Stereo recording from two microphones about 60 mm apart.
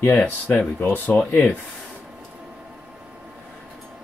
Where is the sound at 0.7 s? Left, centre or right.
Left.